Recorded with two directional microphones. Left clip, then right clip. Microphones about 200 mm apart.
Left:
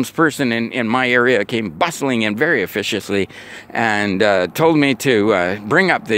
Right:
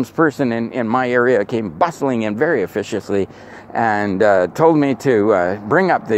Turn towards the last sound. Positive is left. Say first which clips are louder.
# even
turn(degrees=40)  # may be behind; listen again after turning